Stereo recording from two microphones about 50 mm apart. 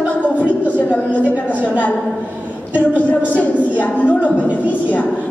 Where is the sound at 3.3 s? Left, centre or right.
Left.